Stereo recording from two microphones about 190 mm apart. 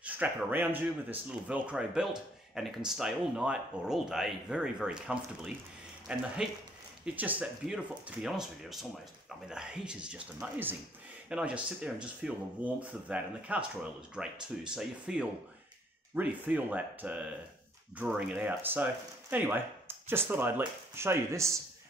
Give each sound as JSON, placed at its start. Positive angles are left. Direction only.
{"t": 0.0, "sound": "speech", "side_deg": -10}